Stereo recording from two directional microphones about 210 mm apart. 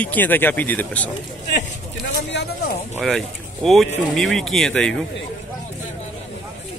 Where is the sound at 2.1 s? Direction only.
50° left (ahead or behind).